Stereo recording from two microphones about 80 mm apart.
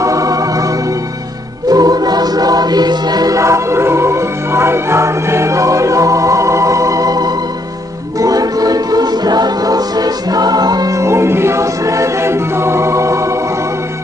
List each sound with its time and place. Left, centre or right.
0.0 s music: right
1.7 s music: right
3.3 s music: right
11.0 s music: right